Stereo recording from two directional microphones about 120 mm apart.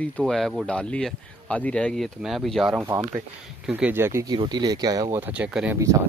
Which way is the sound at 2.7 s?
15° right (ahead or behind).